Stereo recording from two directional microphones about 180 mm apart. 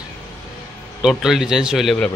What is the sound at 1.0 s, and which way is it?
Speech, centre (ahead or behind).